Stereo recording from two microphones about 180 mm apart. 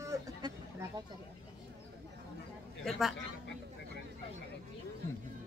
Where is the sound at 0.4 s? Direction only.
25° right (ahead or behind).